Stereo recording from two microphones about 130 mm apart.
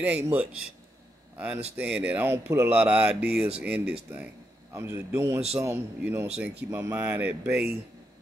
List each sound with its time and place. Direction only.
0.0 s speech: 15° right (ahead or behind)
4.7 s a man's voice: 25° right (ahead or behind)